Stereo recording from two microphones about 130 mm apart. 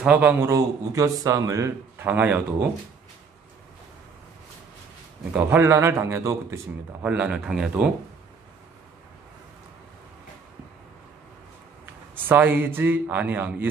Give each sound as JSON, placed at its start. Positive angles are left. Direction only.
{"t": 0.0, "sound": "a man's voice", "side_deg": -10}
{"t": 0.5, "sound": "a man's voice", "side_deg": -25}
{"t": 5.3, "sound": "a man's voice", "side_deg": -15}
{"t": 7.0, "sound": "a man's voice", "side_deg": -10}
{"t": 11.8, "sound": "a man's voice", "side_deg": -15}